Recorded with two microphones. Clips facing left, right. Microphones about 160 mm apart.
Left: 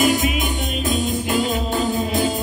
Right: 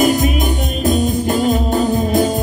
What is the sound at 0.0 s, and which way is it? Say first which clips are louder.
Music: right 4 dB; 45° right (ahead or behind).